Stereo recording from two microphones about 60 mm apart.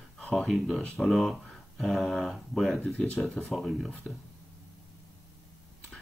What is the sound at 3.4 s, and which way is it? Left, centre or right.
Speech, centre.